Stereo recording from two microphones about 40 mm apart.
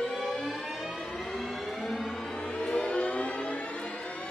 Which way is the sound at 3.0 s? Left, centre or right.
Left.